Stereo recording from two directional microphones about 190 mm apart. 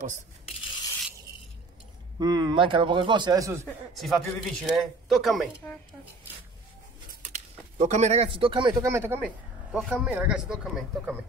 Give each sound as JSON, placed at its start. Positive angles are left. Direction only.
{"t": 2.1, "sound": "speech", "side_deg": -20}
{"t": 3.6, "sound": "speech", "side_deg": 0}
{"t": 7.3, "sound": "speech", "side_deg": -35}